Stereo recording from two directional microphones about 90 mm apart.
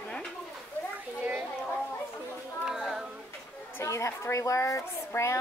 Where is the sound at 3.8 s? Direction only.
35° left (ahead or behind).